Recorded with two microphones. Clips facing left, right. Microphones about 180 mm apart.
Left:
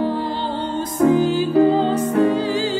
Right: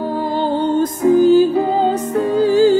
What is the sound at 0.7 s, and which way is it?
Music, 45° right (ahead or behind).